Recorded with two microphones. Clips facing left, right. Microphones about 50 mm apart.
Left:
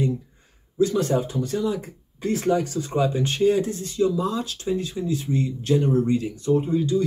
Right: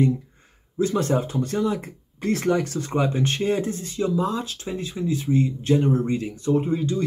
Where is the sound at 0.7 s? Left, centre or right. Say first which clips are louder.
Left 1 dB; right.